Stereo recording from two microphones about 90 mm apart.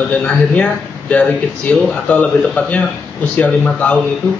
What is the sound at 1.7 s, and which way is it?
A man's voice, 15° left (ahead or behind).